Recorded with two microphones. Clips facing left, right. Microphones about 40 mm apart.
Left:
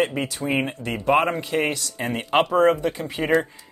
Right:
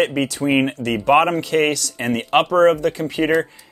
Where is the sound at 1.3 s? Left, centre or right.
Right.